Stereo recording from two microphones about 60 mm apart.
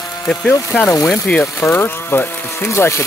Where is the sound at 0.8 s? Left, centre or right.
Left.